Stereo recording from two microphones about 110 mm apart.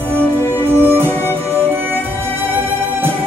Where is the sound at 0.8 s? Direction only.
20° right (ahead or behind).